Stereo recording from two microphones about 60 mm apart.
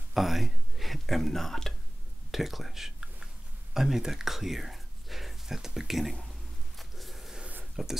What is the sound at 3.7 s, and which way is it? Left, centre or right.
Speech, centre.